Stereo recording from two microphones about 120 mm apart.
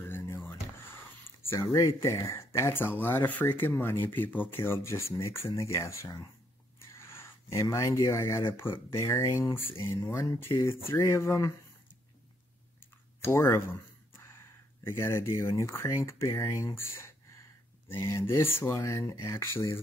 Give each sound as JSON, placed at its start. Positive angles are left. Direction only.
{"t": 0.0, "sound": "a sound", "side_deg": 20}
{"t": 1.5, "sound": "speech", "side_deg": 25}
{"t": 13.2, "sound": "speech", "side_deg": 20}